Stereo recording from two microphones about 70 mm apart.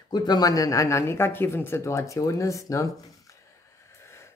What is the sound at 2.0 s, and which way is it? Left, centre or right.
Speech, left.